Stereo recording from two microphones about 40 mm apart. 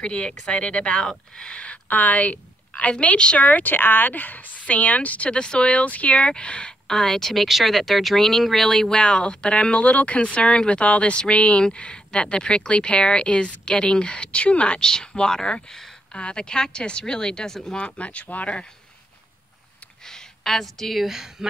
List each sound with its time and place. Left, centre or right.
0.0 s speech: left
1.9 s a woman's voice: left
3.7 s a woman's voice: left
6.9 s speech: centre
7.4 s speech: centre
8.9 s a woman's voice: left
14.8 s a woman's voice: centre; by 18.6 s left
20.1 s a sound: centre
21.0 s speech: centre